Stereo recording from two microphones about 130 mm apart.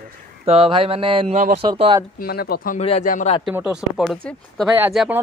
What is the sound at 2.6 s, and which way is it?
Speech, 90° left.